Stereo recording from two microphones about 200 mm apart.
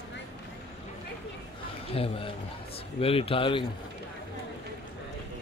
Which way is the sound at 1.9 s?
30° left (ahead or behind).